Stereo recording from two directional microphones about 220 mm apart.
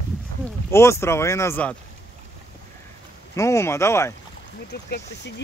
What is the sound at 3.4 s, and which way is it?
Speech, 15° left (ahead or behind).